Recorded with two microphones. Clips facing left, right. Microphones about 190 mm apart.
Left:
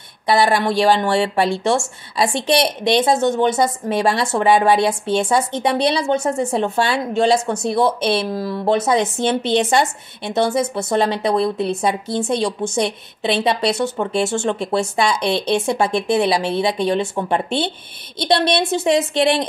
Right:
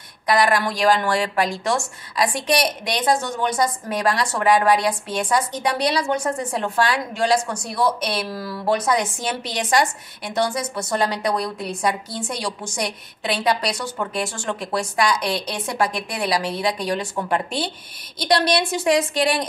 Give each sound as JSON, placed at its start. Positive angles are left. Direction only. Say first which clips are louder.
{"t": 0.3, "sound": "speech", "louder": "left 3 dB", "side_deg": 25}